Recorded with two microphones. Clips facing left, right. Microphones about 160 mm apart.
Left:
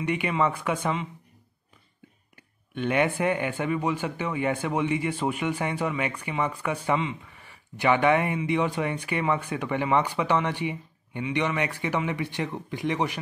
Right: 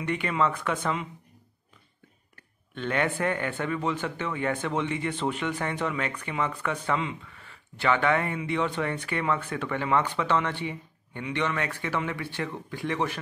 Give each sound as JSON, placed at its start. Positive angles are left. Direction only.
{"t": 0.0, "sound": "speech", "side_deg": 15}
{"t": 2.3, "sound": "speech", "side_deg": 15}